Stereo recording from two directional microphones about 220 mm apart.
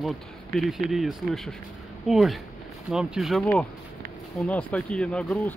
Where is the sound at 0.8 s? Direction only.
Centre (ahead or behind).